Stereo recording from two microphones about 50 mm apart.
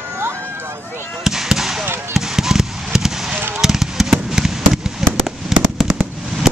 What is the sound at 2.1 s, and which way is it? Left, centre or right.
Fireworks, centre.